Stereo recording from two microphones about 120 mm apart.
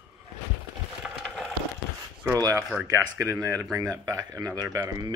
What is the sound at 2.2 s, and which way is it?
Speech, 25° right (ahead or behind).